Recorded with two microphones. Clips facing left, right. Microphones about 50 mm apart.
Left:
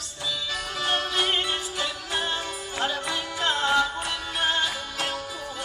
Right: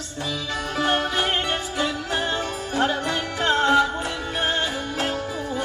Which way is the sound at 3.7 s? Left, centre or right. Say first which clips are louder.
Right 4 dB; right.